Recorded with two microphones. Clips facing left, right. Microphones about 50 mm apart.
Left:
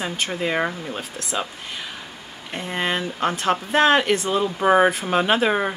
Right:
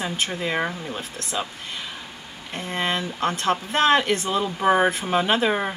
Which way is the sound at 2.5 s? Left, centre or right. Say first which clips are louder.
Left 1 dB; centre.